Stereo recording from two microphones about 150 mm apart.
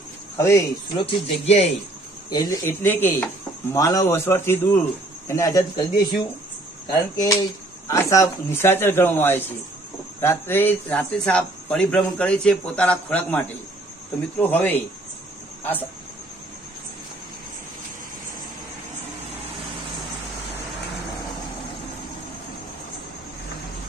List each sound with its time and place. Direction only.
0.4 s speech: 20° left (ahead or behind)
0.9 s speech: 45° left (ahead or behind)
2.2 s speech: 25° left (ahead or behind)
2.8 s speech: 15° left (ahead or behind)
14.4 s speech: 10° left (ahead or behind)